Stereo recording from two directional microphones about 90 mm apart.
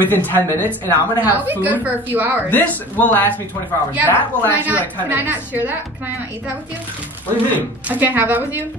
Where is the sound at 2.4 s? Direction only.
20° left (ahead or behind).